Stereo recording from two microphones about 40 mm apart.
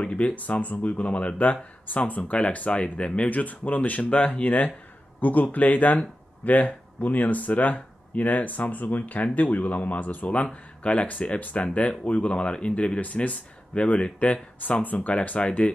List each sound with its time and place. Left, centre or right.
0.0 s speech: left
3.3 s speech: left
13.0 s speech: left
14.7 s speech: left
15.0 s speech: left